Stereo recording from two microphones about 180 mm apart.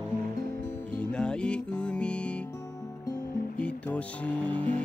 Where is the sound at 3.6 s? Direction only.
5° left (ahead or behind).